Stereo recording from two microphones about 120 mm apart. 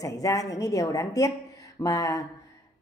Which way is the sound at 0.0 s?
30° left (ahead or behind).